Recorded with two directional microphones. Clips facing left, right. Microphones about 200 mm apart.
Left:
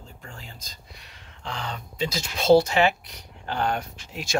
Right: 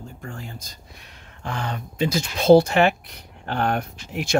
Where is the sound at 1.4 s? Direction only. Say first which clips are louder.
Right 4 dB; 50° right (ahead or behind).